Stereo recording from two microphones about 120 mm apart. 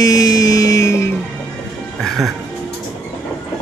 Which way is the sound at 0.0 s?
30° left (ahead or behind).